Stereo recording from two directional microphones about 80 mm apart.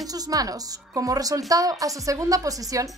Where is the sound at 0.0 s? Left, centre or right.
Right.